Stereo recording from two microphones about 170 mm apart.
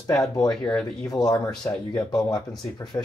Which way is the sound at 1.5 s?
5° left (ahead or behind).